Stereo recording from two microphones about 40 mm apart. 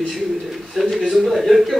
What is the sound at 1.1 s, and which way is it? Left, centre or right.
Speech, centre.